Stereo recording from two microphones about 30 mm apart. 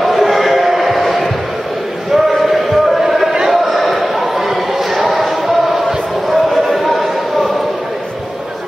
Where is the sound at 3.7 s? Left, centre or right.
Centre.